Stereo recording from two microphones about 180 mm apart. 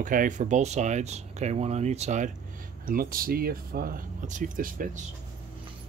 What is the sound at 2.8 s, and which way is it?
Speech, 55° right (ahead or behind).